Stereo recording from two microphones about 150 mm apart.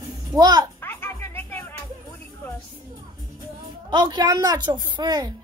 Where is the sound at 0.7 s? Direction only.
15° left (ahead or behind).